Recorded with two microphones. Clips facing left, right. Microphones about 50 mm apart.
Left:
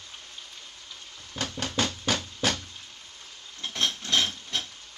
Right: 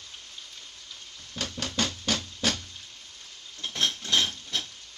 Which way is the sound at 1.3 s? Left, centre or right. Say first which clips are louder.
Left 2 dB; centre.